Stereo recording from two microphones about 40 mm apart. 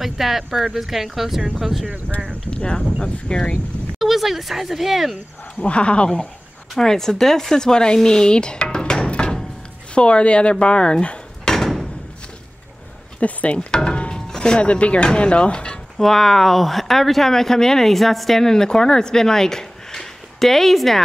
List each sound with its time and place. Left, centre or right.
0.0 s speech: centre
2.2 s speech: left
4.0 s speech: centre
5.6 s speech: left
6.8 s speech: centre
13.2 s speech: left
13.6 s wood: centre
14.1 s speech: centre
16.0 s speech: centre